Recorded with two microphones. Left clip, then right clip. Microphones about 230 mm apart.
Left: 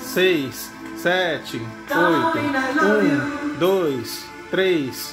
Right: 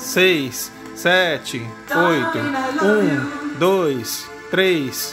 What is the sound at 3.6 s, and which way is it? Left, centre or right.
Speech, right.